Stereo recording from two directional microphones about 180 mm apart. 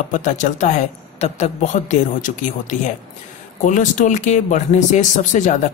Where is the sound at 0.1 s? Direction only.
45° left (ahead or behind).